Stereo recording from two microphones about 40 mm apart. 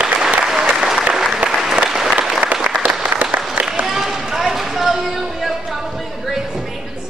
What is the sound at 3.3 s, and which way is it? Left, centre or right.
Applause, right.